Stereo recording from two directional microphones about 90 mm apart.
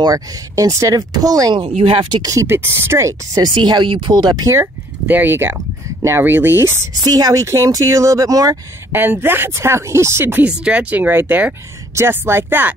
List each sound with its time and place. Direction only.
0.0 s speech: 45° right (ahead or behind)
1.5 s speech: 75° right (ahead or behind)
2.4 s speech: 25° right (ahead or behind)
3.4 s speech: 55° right (ahead or behind)
5.0 s speech: 20° right (ahead or behind)
7.0 s speech: 45° right (ahead or behind)
7.4 s speech: 35° right (ahead or behind)
8.9 s speech: 20° right (ahead or behind)